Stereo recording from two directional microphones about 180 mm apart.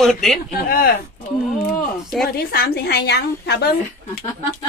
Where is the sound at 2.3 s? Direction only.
60° left (ahead or behind).